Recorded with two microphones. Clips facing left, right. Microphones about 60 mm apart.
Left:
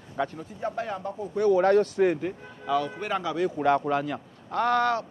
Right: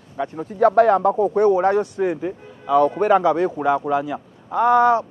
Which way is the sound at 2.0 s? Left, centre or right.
Centre.